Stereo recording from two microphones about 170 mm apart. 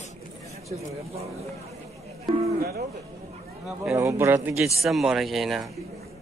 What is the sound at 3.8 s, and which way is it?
Speech, 15° right (ahead or behind).